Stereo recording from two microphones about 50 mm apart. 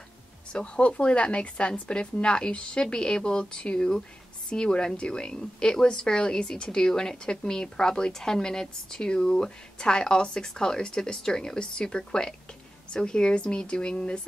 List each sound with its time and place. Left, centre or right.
0.5 s a woman's voice: left